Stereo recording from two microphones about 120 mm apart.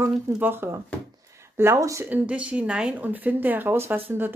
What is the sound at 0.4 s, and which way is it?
A woman's voice, 20° right (ahead or behind).